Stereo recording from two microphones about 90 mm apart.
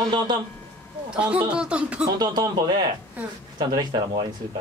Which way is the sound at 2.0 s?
45° right (ahead or behind).